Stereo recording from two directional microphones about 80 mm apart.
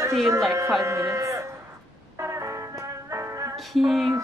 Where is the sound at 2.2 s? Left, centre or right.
Right.